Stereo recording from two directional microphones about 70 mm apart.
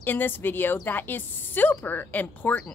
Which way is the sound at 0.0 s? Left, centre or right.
Left.